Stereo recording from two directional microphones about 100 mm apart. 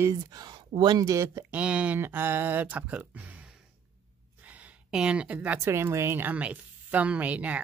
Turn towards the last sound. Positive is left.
turn(degrees=-15)  # may be behind; listen again after turning